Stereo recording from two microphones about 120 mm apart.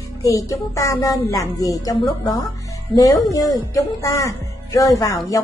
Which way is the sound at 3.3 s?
30° left (ahead or behind).